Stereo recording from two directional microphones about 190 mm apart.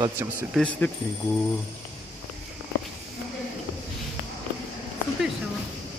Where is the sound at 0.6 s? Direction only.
5° left (ahead or behind).